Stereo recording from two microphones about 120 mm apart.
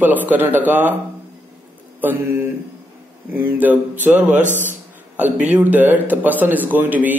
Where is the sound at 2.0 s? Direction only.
15° right (ahead or behind).